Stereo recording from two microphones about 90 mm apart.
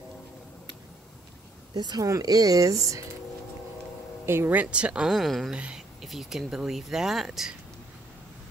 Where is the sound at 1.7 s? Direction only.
50° right (ahead or behind).